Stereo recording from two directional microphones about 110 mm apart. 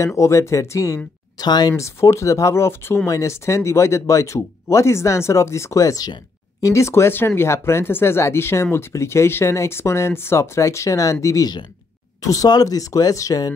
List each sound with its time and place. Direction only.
0.0 s speech: 25° left (ahead or behind)